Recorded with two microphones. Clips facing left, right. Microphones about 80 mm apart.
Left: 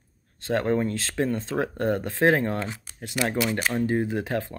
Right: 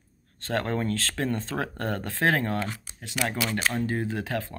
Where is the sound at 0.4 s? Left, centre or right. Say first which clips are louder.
Left 4 dB; centre.